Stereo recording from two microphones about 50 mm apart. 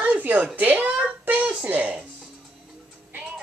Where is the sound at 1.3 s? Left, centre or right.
Right.